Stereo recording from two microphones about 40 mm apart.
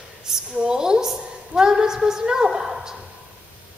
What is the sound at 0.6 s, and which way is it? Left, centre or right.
A woman's voice, centre.